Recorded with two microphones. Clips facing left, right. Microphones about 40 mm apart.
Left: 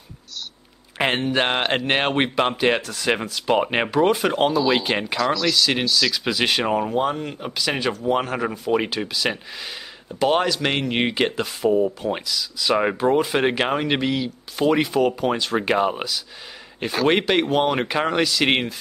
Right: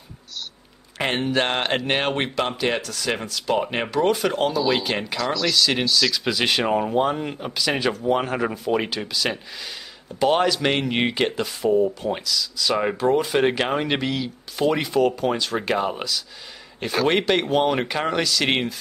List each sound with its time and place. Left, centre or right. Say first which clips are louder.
0.9 s speech: left 1 dB; centre
5.2 s speech: left 1 dB; centre